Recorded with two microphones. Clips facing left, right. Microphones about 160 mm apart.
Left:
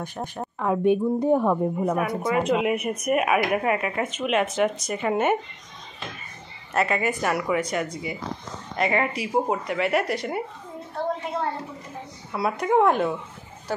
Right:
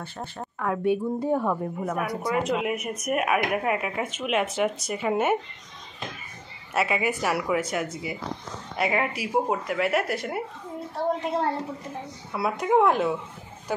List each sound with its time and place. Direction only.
0.0 s speech: 15° left (ahead or behind)
2.0 s speech: centre (ahead or behind)
6.7 s a woman's voice: 5° right (ahead or behind)
12.3 s speech: centre (ahead or behind)